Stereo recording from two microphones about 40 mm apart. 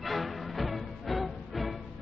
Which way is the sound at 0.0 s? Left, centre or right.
Centre.